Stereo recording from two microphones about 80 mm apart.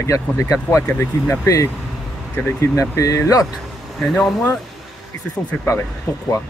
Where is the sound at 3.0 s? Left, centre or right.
Left.